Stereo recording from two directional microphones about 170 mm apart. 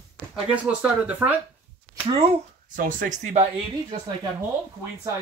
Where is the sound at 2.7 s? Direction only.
50° right (ahead or behind).